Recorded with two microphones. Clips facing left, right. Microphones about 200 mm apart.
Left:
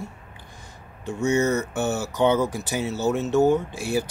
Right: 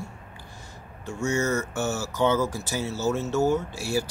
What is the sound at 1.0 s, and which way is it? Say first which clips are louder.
Speech: left 4 dB; 20° left (ahead or behind).